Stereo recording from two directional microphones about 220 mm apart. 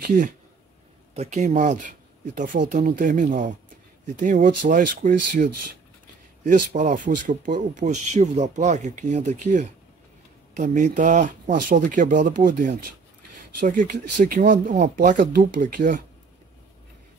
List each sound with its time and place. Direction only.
0.0 s speech: 35° right (ahead or behind)